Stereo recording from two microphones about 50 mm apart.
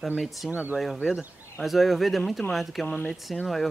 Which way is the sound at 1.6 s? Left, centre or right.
Centre.